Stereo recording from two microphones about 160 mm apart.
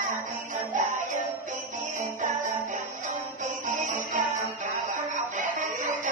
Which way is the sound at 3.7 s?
55° right (ahead or behind).